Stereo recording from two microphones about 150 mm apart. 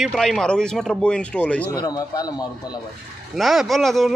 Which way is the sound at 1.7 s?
25° left (ahead or behind).